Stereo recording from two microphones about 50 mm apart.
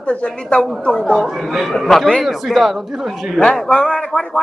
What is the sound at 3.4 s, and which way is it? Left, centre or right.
Speech, left.